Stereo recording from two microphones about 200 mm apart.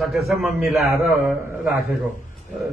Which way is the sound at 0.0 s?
Centre (ahead or behind).